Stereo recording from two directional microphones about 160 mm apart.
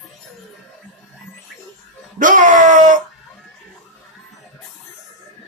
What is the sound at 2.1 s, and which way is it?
Wail, 55° right (ahead or behind).